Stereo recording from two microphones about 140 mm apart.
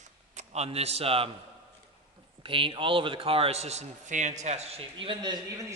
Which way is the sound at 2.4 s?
40° right (ahead or behind).